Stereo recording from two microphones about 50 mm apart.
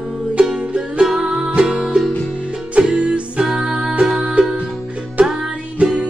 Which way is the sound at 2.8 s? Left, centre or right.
Centre.